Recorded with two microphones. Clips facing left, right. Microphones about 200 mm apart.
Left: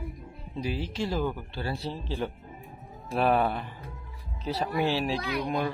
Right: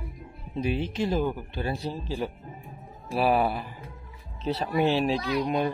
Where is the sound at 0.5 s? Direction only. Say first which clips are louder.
Right 4 dB; 25° right (ahead or behind).